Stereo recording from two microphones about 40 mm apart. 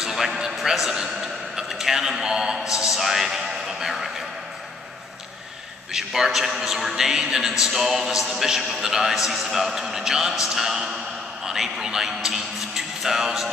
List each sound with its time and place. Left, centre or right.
0.0 s a sound: centre
0.6 s a man's voice: centre
5.9 s a man's voice: centre